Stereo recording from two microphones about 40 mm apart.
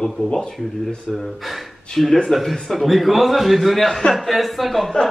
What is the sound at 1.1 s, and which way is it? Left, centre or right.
A man's voice, centre.